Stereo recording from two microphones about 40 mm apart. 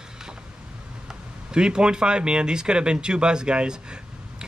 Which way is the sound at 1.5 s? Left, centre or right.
Right.